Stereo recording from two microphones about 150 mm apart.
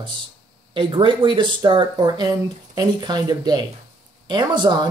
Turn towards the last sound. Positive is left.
turn(degrees=-30)  # may be behind; listen again after turning